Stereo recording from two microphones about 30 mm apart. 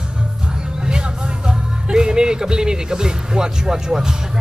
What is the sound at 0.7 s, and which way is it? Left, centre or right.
Speech, right.